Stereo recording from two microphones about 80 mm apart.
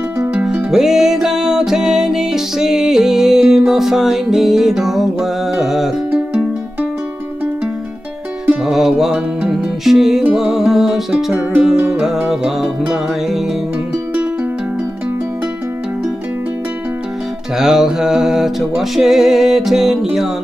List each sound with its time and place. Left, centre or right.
0.2 s music: centre
0.7 s music: centre
8.6 s music: centre
17.6 s music: centre